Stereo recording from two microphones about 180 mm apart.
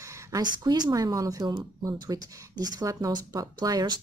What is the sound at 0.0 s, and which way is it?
A woman's voice, 15° right (ahead or behind).